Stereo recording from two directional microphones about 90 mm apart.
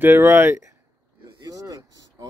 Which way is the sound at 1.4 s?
40° right (ahead or behind).